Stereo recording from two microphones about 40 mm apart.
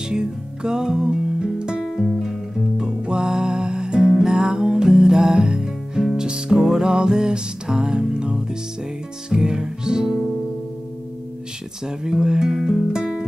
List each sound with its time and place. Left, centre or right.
0.1 s music: right
2.0 s music: centre
2.8 s music: right
11.8 s music: centre